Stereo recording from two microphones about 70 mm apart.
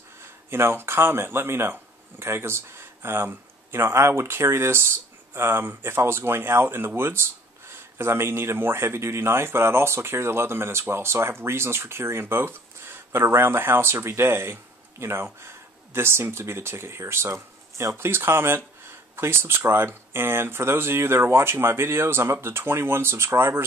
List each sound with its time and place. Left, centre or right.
0.5 s speech: right